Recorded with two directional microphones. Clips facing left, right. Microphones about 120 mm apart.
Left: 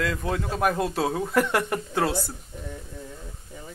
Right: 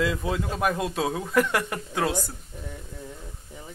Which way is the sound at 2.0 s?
15° right (ahead or behind).